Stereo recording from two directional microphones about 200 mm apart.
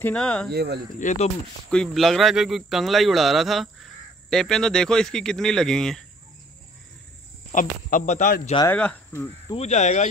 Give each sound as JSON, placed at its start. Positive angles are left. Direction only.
{"t": 0.0, "sound": "speech", "side_deg": 5}
{"t": 0.5, "sound": "speech", "side_deg": -55}
{"t": 0.9, "sound": "speech", "side_deg": 35}
{"t": 1.7, "sound": "speech", "side_deg": 0}
{"t": 7.5, "sound": "speech", "side_deg": 40}
{"t": 8.7, "sound": "speech", "side_deg": 10}
{"t": 9.5, "sound": "speech", "side_deg": 35}